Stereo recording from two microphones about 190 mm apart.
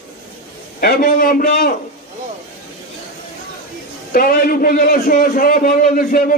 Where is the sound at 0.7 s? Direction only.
50° left (ahead or behind).